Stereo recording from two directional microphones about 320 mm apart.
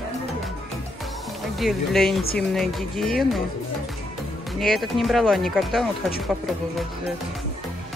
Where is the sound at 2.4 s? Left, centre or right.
Centre.